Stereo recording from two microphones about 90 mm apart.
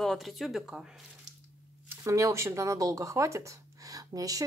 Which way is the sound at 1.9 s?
35° right (ahead or behind).